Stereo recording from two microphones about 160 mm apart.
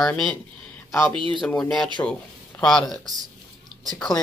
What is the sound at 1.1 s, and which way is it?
Speech, 30° right (ahead or behind).